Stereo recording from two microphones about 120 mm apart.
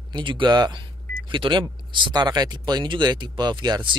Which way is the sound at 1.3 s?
40° right (ahead or behind).